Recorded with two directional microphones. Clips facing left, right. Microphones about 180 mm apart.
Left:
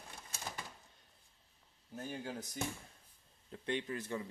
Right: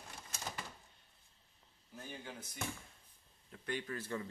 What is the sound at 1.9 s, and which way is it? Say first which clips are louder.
Speech: left 6 dB; 40° left (ahead or behind).